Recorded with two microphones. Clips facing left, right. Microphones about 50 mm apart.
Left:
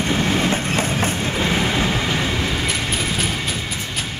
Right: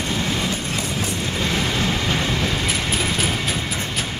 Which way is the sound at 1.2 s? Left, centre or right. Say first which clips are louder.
Left 1 dB; centre.